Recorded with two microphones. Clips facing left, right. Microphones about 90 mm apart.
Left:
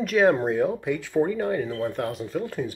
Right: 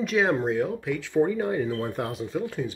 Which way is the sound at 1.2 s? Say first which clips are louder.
Even; 10° right (ahead or behind).